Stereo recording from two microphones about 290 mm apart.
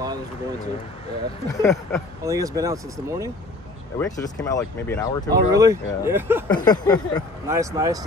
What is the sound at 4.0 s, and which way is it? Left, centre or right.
Speech, centre.